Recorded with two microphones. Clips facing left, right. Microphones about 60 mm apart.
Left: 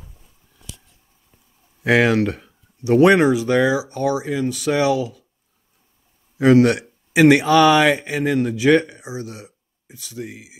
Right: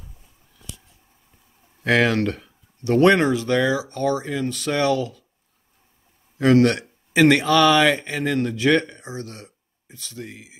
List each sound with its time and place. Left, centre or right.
1.8 s speech: centre
6.3 s speech: centre